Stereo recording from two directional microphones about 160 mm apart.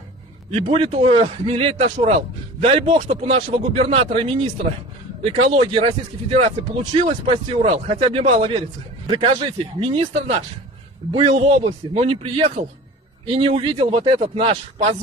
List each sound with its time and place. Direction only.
0.5 s a man's voice: 35° right (ahead or behind)
7.4 s a man's voice: 40° right (ahead or behind)